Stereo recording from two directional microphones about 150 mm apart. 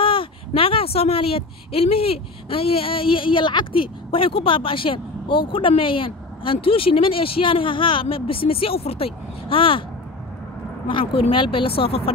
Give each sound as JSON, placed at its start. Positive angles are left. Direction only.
{"t": 0.0, "sound": "a woman's voice", "side_deg": 35}
{"t": 10.9, "sound": "a woman's voice", "side_deg": 35}